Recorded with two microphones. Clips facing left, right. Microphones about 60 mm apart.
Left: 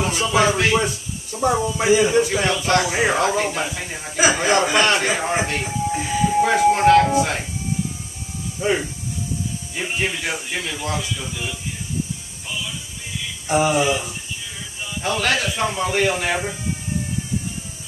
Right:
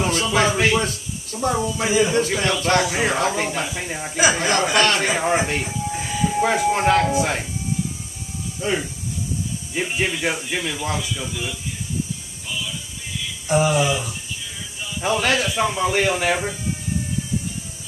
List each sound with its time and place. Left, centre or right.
0.1 s speech: centre
2.5 s speech: centre
2.9 s speech: centre
4.2 s speech: centre
4.7 s speech: centre
5.0 s speech: centre
8.5 s speech: centre
10.3 s speech: centre
11.2 s speech: centre
13.5 s speech: centre
15.0 s speech: centre